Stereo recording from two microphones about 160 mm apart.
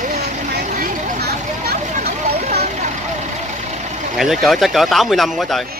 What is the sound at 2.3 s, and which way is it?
Vehicle, 40° right (ahead or behind).